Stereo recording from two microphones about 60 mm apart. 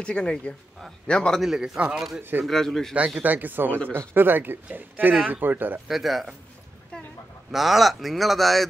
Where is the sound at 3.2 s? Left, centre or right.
Right.